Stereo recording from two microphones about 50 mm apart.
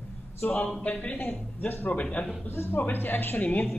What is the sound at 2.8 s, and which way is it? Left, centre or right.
Speech, left.